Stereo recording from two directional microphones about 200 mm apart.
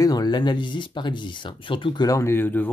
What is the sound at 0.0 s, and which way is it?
Speech, 20° left (ahead or behind).